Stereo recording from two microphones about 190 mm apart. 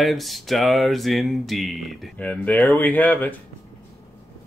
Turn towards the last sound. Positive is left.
turn(degrees=10)  # may be behind; listen again after turning